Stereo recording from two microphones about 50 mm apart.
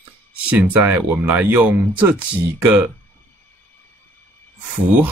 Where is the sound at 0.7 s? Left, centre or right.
Right.